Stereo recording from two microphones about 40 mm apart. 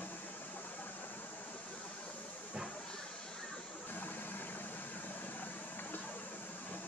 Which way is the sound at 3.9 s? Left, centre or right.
Left.